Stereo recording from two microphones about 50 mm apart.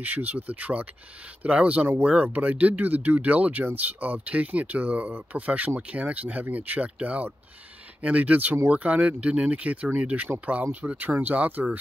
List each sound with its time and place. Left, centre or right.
0.0 s speech: right